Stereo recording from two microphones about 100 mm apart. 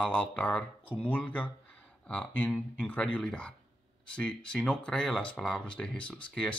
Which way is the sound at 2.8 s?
15° left (ahead or behind).